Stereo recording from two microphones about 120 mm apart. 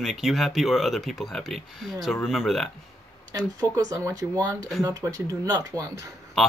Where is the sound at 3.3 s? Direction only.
30° right (ahead or behind).